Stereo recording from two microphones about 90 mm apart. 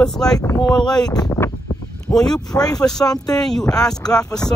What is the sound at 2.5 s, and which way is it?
Speech, 45° left (ahead or behind).